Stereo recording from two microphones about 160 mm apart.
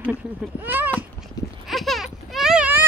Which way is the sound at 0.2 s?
10° right (ahead or behind).